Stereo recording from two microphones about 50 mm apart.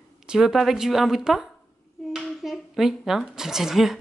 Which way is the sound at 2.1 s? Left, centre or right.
Centre.